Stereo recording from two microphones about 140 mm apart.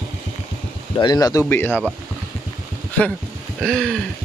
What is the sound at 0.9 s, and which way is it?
Speech, 30° left (ahead or behind).